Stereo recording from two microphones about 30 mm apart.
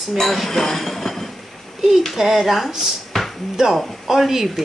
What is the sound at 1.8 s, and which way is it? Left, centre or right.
Speech, centre.